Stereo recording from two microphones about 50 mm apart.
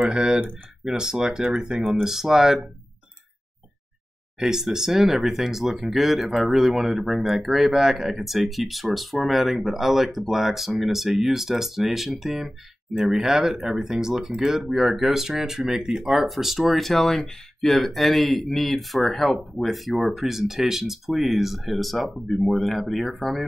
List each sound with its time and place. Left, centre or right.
0.1 s speech: centre
1.8 s speech: centre
2.0 s speech: centre
4.4 s speech: centre